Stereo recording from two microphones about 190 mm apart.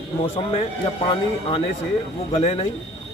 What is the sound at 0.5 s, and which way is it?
A man's voice, 25° left (ahead or behind).